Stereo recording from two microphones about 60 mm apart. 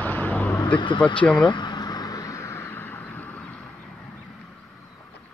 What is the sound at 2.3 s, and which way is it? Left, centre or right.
Vehicle, left.